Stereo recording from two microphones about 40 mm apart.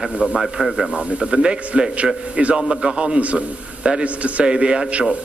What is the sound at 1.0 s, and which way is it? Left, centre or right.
Speech, right.